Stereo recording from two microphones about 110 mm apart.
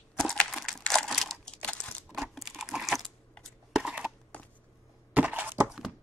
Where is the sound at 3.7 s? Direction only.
5° right (ahead or behind).